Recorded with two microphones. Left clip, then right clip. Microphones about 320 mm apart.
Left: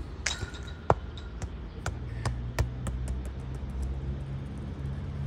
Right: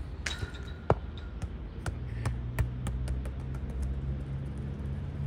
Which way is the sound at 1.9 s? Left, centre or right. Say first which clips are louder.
Left 4 dB; left.